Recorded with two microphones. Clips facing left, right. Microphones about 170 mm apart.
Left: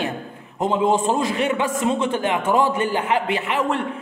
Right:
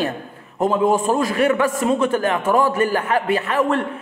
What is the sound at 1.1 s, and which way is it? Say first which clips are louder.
A man's voice: right 3 dB; 20° left (ahead or behind).